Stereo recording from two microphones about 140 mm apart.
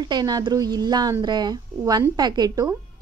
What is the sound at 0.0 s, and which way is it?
A woman's voice, 30° right (ahead or behind).